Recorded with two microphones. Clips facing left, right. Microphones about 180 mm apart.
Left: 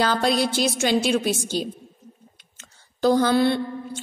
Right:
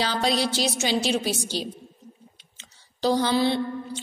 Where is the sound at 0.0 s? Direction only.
50° left (ahead or behind).